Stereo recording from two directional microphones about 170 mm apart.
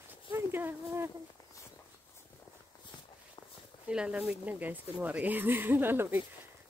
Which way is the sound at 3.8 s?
5° right (ahead or behind).